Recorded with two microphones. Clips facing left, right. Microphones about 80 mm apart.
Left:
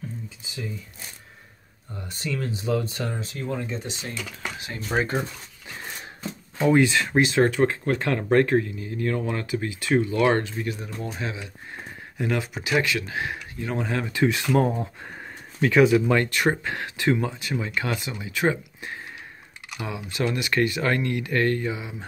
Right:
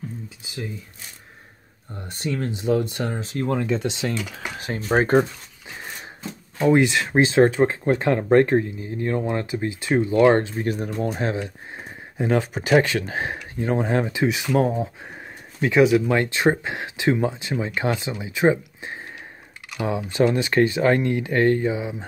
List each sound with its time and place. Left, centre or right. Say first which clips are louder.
2.1 s speech: right 3 dB; right
3.3 s speech: right 10 dB; right
4.6 s speech: right 6 dB; right
6.8 s speech: right 1 dB; centre
7.1 s speech: right 4 dB; right
10.7 s speech: right 7 dB; right
11.7 s speech: right 1 dB; right
14.1 s speech: right 1 dB; centre